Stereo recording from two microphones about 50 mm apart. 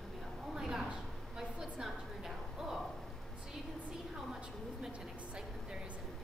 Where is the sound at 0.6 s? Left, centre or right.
Centre.